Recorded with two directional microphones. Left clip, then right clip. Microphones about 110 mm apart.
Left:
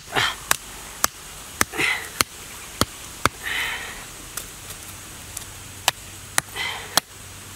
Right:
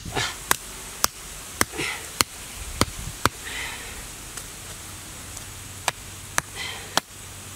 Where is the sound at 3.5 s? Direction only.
25° left (ahead or behind).